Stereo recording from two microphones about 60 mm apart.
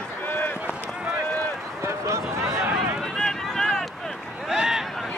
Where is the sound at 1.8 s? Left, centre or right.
Right.